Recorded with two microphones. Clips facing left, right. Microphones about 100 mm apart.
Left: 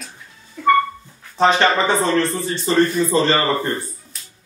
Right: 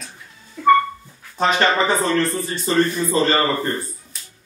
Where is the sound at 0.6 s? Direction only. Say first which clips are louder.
Right 2 dB; 5° right (ahead or behind).